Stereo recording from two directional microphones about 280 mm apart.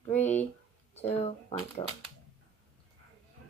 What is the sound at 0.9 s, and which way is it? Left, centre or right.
Speech, left.